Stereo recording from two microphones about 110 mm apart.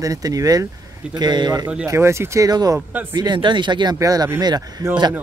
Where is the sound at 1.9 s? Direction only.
25° right (ahead or behind).